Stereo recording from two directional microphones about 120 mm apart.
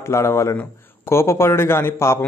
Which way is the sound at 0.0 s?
20° left (ahead or behind).